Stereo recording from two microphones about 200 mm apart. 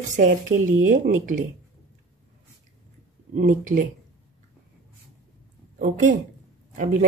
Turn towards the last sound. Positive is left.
turn(degrees=-40)  # may be behind; listen again after turning